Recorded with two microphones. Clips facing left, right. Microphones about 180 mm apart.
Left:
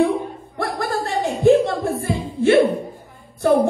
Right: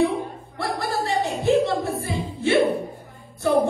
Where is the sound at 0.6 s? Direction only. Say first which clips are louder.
Left 2 dB; 50° left (ahead or behind).